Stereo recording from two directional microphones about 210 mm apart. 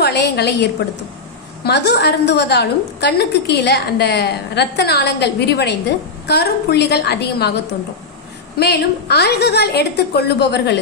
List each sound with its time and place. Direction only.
0.0 s a sound: 50° left (ahead or behind)
1.6 s a woman's voice: 55° left (ahead or behind)
8.5 s a woman's voice: 50° left (ahead or behind)